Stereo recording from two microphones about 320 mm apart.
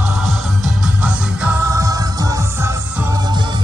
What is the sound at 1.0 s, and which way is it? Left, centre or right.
Music, centre.